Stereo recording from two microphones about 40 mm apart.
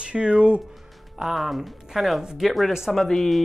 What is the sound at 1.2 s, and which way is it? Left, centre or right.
Speech, centre.